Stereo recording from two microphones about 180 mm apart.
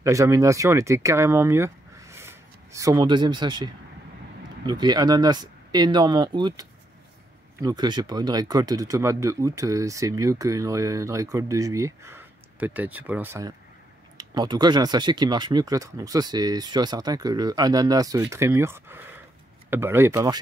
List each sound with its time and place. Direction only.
0.0 s speech: 15° right (ahead or behind)